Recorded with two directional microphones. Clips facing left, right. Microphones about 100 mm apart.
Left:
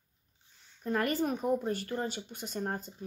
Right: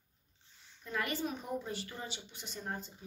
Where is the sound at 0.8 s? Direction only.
45° left (ahead or behind).